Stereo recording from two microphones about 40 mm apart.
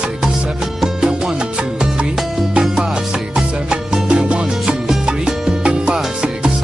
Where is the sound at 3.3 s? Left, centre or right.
Right.